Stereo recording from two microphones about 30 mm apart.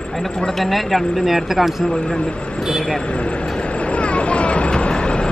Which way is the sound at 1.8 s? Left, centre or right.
Left.